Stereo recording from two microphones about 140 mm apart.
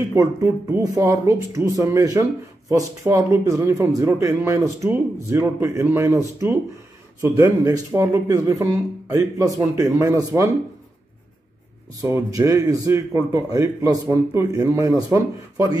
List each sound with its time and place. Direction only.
0.1 s a man's voice: 20° right (ahead or behind)
12.0 s speech: 25° right (ahead or behind)